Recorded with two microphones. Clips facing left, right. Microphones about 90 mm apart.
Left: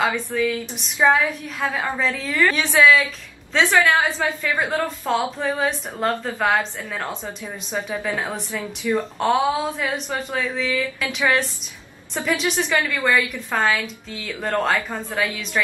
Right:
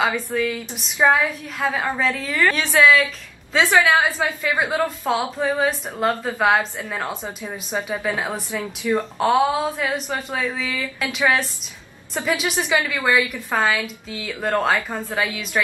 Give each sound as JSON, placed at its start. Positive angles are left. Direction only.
{"t": 0.0, "sound": "speech", "side_deg": -5}
{"t": 3.7, "sound": "a woman's voice", "side_deg": -15}
{"t": 7.4, "sound": "a woman's voice", "side_deg": -15}
{"t": 8.9, "sound": "a woman's voice", "side_deg": 0}
{"t": 15.1, "sound": "a woman's voice", "side_deg": -15}